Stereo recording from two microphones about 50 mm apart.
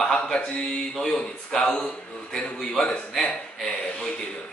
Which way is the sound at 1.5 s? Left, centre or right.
Centre.